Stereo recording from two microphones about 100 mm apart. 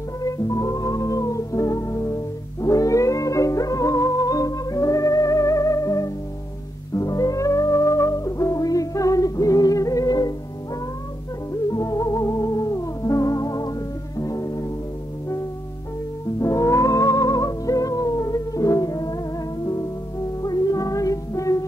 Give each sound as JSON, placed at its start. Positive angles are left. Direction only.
{"t": 0.2, "sound": "music", "side_deg": 35}
{"t": 11.7, "sound": "music", "side_deg": 35}
{"t": 16.3, "sound": "music", "side_deg": 30}